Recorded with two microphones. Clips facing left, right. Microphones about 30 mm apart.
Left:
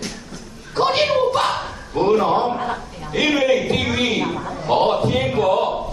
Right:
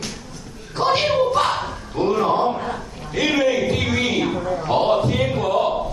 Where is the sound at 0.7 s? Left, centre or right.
Left.